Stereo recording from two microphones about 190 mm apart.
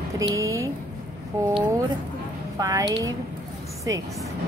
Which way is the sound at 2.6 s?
15° right (ahead or behind).